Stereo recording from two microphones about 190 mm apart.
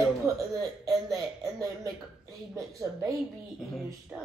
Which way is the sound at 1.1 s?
15° right (ahead or behind).